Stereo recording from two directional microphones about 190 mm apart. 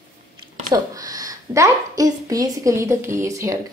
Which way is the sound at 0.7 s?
20° right (ahead or behind).